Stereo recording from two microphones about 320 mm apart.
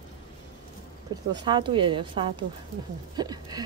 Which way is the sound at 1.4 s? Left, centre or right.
Centre.